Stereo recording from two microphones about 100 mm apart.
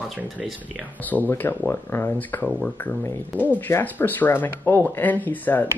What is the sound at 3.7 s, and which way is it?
Speech, 20° left (ahead or behind).